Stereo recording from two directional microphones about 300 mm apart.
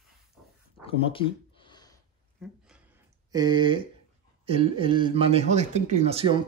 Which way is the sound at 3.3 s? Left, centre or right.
Centre.